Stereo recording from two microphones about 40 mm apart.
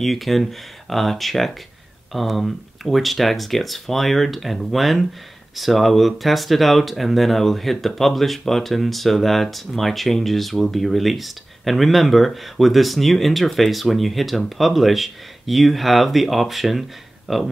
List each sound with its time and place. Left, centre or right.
0.0 s speech: centre